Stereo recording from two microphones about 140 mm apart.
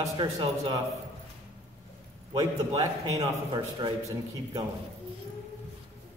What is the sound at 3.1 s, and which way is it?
Speech, 25° right (ahead or behind).